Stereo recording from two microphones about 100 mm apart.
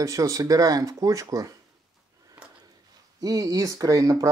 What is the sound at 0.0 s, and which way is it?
Speech, 35° right (ahead or behind).